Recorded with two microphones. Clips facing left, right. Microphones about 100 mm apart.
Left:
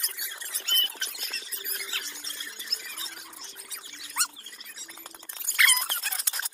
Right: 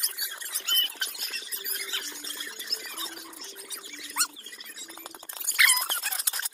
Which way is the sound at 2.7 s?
40° right (ahead or behind).